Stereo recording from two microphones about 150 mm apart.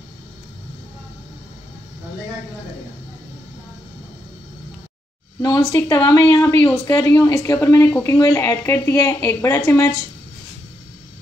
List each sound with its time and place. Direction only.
5.4 s a woman's voice: 20° left (ahead or behind)